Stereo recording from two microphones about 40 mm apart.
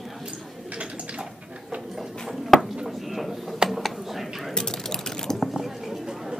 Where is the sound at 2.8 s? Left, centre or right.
Centre.